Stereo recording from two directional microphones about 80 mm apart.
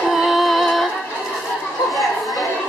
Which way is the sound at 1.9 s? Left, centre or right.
Centre.